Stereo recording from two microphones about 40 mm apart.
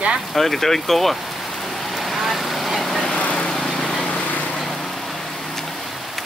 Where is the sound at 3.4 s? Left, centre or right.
Centre.